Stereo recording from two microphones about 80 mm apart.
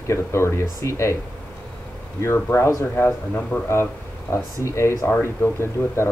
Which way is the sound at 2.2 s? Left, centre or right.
Left.